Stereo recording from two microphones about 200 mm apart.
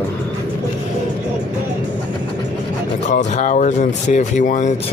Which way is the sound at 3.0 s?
40° left (ahead or behind).